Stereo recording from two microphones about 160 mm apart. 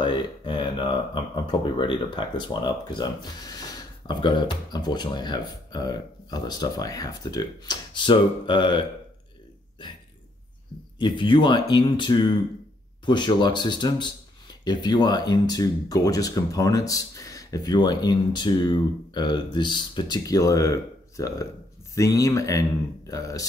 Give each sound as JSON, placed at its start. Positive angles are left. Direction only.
{"t": 0.0, "sound": "speech", "side_deg": 30}
{"t": 11.0, "sound": "speech", "side_deg": 30}